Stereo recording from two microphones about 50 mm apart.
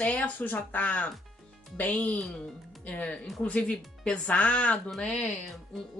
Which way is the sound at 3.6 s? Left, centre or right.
Centre.